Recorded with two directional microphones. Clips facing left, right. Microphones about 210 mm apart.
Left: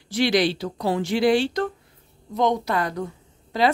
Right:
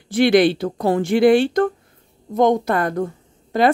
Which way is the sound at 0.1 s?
55° right (ahead or behind).